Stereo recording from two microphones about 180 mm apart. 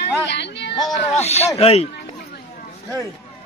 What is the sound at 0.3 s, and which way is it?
Music, 70° left (ahead or behind).